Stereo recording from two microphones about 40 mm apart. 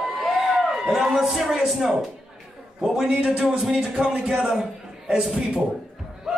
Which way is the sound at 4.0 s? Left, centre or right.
Right.